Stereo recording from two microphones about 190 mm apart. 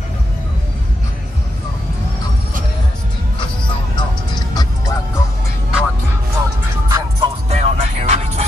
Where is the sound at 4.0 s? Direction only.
20° left (ahead or behind).